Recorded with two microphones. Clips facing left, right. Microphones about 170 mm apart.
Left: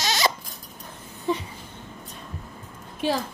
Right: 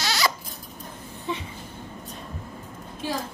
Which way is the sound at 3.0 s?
70° left (ahead or behind).